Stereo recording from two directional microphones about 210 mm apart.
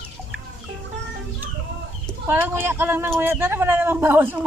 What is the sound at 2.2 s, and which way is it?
A man's voice, 10° right (ahead or behind).